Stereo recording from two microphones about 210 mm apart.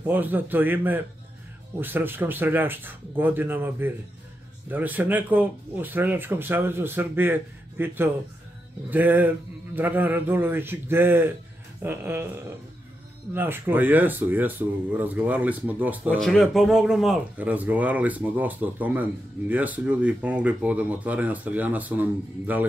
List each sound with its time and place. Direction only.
0.0 s speech: 10° right (ahead or behind)
13.3 s speech: 10° right (ahead or behind)